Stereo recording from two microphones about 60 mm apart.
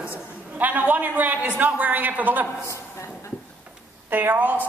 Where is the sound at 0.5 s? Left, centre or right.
Right.